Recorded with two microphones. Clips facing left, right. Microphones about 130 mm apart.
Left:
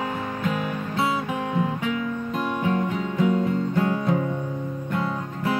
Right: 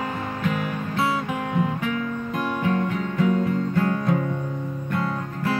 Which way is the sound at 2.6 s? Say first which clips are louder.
Right 1 dB; 15° left (ahead or behind).